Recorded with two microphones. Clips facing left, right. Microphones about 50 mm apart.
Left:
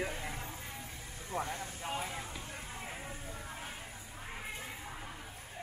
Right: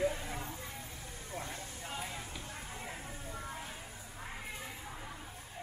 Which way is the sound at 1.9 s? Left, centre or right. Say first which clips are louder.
Left 2 dB; left.